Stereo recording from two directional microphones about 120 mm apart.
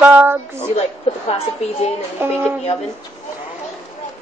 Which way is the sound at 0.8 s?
55° left (ahead or behind).